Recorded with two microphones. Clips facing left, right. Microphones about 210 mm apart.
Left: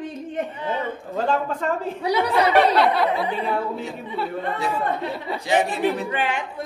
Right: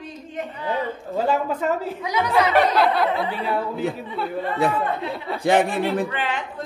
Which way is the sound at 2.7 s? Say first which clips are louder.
Even; centre (ahead or behind).